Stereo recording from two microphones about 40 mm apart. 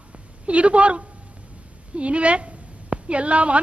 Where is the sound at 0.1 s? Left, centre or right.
Right.